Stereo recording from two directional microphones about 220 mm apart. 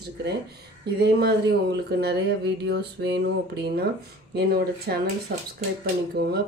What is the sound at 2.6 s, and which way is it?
Mantra, 55° right (ahead or behind).